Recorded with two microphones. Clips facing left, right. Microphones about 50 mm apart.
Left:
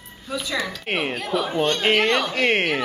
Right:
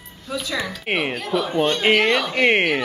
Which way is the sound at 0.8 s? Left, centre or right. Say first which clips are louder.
Right 4 dB; centre.